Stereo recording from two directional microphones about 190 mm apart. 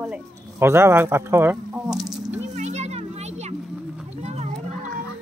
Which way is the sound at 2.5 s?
35° right (ahead or behind).